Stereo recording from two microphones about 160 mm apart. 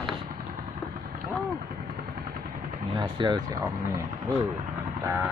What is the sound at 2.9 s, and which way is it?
Speech, 30° right (ahead or behind).